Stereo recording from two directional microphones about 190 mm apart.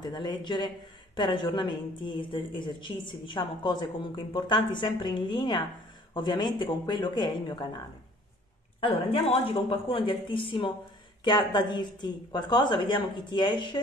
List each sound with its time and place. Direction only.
0.0 s a woman's voice: 20° left (ahead or behind)
8.8 s a woman's voice: 30° left (ahead or behind)